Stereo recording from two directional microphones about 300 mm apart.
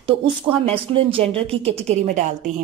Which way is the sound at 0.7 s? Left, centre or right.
Centre.